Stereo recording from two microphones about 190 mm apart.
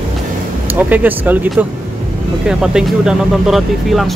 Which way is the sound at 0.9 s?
10° right (ahead or behind).